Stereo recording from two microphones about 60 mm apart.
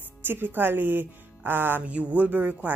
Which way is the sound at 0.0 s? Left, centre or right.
Right.